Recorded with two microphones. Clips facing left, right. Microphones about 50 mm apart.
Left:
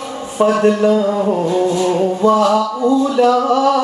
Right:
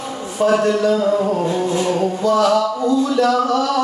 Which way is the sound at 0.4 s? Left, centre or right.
Left.